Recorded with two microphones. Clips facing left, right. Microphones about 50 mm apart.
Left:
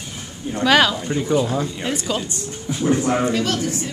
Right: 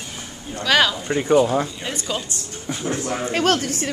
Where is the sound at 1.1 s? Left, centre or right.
Right.